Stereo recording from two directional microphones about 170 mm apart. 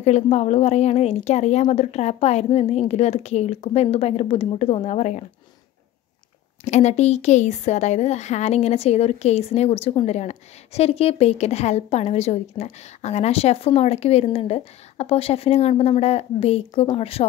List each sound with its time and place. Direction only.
0.0 s a woman's voice: 40° left (ahead or behind)
6.6 s a woman's voice: 40° left (ahead or behind)